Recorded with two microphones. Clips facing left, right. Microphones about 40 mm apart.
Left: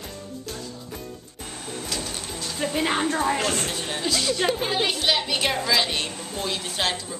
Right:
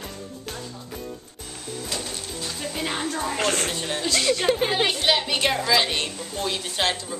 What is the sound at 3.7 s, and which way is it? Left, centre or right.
Speech, centre.